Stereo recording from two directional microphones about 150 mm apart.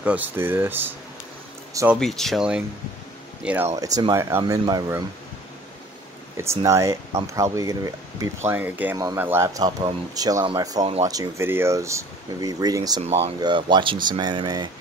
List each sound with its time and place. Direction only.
0.0 s speech: 10° right (ahead or behind)
2.0 s speech: centre (ahead or behind)
3.7 s speech: 20° right (ahead or behind)
6.3 s speech: 20° right (ahead or behind)